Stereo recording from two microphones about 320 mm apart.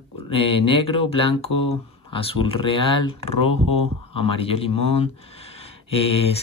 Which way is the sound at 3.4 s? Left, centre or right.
Left.